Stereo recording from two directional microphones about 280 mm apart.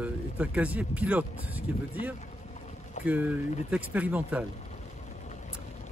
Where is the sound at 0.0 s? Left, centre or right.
Centre.